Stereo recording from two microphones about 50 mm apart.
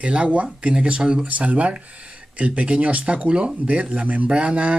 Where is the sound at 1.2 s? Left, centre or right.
Right.